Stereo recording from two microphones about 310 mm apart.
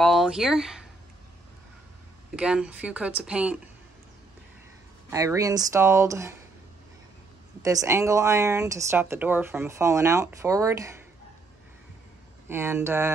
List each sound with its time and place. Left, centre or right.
0.0 s speech: centre
2.3 s speech: centre
5.1 s a woman's voice: centre
7.6 s a woman's voice: centre
12.4 s a woman's voice: centre